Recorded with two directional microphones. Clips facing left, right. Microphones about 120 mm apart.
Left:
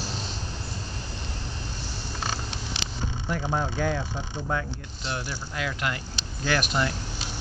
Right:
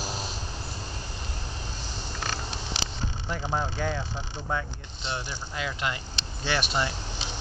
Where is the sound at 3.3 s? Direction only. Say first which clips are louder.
Left 2 dB; 5° right (ahead or behind).